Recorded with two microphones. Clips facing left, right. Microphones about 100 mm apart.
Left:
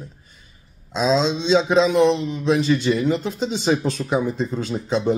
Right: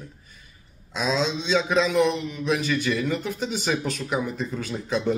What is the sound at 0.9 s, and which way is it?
A man's voice, 25° left (ahead or behind).